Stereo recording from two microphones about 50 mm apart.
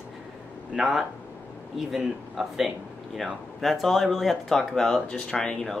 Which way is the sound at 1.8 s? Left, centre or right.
Centre.